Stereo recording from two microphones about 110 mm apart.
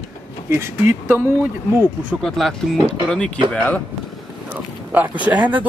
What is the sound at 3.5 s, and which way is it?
Speech, 10° left (ahead or behind).